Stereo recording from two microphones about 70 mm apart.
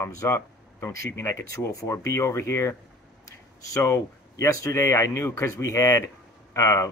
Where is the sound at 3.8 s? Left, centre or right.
Left.